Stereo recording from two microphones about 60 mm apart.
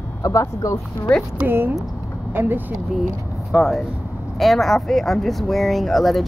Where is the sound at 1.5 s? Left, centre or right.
Right.